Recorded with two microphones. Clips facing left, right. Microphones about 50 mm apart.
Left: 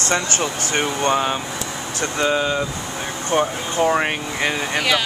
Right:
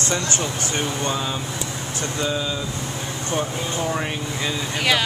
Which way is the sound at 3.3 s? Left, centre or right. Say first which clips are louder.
Left 6 dB; left.